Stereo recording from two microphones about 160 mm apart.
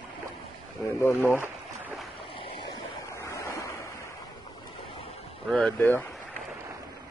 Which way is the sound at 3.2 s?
20° left (ahead or behind).